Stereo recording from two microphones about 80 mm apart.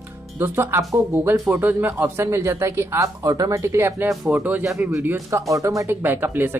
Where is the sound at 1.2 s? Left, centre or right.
Right.